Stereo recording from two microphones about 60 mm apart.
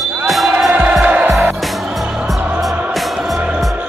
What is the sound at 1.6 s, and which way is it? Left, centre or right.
Music, centre.